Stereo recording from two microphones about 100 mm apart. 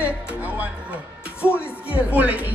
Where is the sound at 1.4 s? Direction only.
25° left (ahead or behind).